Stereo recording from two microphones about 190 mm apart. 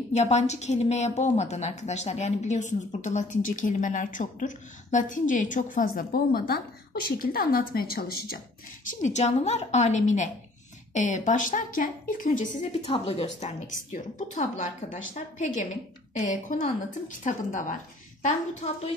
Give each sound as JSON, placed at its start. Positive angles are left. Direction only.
{"t": 0.1, "sound": "a woman's voice", "side_deg": 35}
{"t": 9.0, "sound": "a woman's voice", "side_deg": 35}